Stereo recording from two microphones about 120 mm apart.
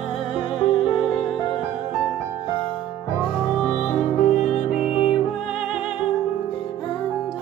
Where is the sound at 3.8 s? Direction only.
65° left (ahead or behind).